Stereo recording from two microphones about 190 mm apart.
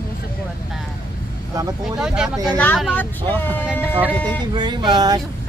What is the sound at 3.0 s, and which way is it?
Speech, 10° left (ahead or behind).